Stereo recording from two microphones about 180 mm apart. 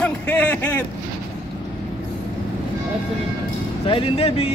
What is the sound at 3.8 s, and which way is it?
Speech, 30° left (ahead or behind).